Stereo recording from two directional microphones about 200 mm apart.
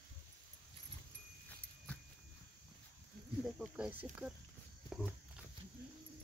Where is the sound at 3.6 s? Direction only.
5° right (ahead or behind).